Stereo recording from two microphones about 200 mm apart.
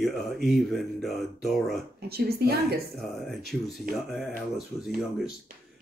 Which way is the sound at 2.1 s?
50° right (ahead or behind).